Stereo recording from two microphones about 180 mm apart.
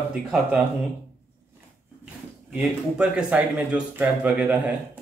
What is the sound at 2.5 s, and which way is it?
Speech, 5° right (ahead or behind).